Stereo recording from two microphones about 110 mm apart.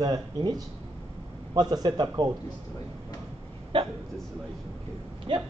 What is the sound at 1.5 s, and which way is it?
Speech, 35° right (ahead or behind).